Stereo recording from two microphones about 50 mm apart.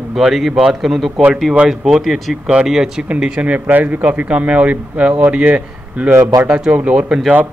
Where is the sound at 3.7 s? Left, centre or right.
Right.